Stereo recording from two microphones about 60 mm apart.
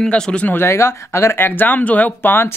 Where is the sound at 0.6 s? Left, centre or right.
Left.